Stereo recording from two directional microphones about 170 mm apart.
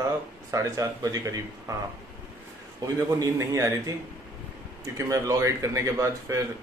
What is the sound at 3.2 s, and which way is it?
Speech, 20° right (ahead or behind).